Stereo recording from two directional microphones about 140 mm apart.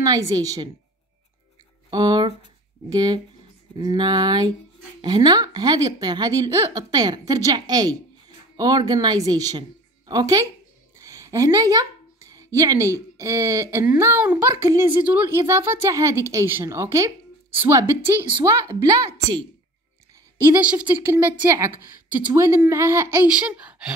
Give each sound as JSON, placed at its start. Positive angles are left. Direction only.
{"t": 0.0, "sound": "a woman's voice", "side_deg": -25}
{"t": 1.9, "sound": "a woman's voice", "side_deg": -30}
{"t": 11.0, "sound": "a sound", "side_deg": -25}
{"t": 12.5, "sound": "a woman's voice", "side_deg": -25}
{"t": 20.4, "sound": "a woman's voice", "side_deg": -15}
{"t": 23.2, "sound": "speech", "side_deg": -10}